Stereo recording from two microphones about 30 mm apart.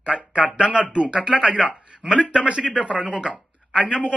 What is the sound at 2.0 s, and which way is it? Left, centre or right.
Speech, right.